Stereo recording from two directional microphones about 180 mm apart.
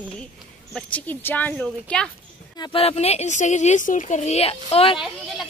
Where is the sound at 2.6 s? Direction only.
30° left (ahead or behind).